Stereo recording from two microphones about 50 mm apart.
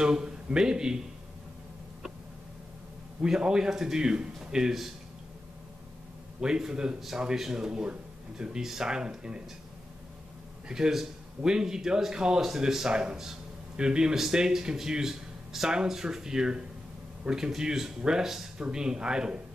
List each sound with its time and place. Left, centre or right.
0.0 s speech: centre
3.2 s speech: centre
6.4 s speech: centre
7.0 s speech: centre
10.7 s speech: centre